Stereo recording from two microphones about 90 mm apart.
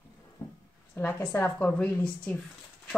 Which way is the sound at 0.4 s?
25° left (ahead or behind).